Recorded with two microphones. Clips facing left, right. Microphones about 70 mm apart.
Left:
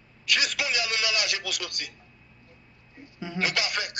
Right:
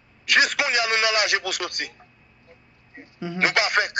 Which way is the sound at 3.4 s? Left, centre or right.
Right.